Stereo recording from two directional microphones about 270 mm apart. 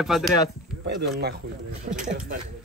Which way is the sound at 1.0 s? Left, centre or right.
Right.